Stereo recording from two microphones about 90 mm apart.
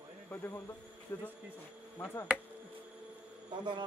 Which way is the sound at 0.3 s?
20° left (ahead or behind).